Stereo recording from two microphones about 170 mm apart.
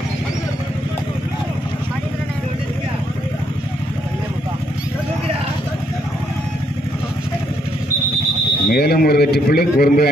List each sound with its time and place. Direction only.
8.6 s a man's voice: 65° left (ahead or behind)